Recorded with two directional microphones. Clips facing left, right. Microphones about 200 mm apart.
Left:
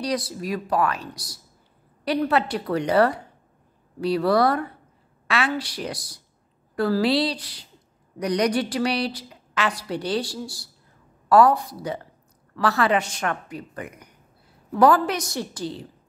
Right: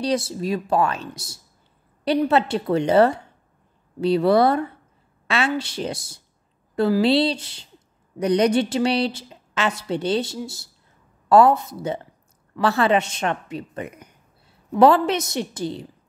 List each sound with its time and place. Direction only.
0.0 s a woman's voice: 25° right (ahead or behind)